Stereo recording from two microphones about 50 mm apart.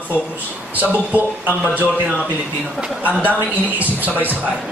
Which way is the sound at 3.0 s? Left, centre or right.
Right.